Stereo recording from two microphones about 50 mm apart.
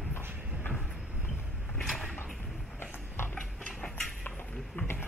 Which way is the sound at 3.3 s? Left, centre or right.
Centre.